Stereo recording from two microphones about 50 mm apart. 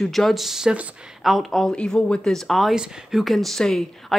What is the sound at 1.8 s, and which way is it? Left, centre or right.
Speech, left.